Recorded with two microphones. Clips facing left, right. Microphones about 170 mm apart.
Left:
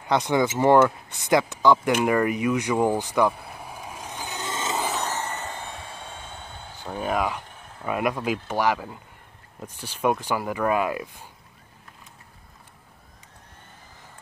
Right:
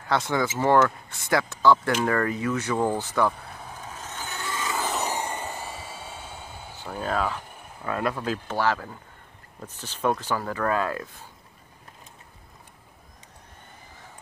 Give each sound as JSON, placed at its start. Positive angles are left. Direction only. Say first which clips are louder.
{"t": 0.0, "sound": "speech", "louder": "left 3 dB", "side_deg": 15}
{"t": 5.0, "sound": "vehicle", "louder": "right 1 dB", "side_deg": -15}
{"t": 7.0, "sound": "speech", "louder": "left 2 dB", "side_deg": 15}